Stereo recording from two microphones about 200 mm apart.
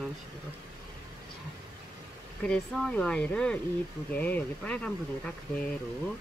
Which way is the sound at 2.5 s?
5° left (ahead or behind).